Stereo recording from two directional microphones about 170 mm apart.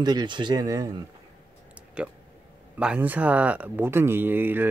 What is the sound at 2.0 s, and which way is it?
Speech, 5° right (ahead or behind).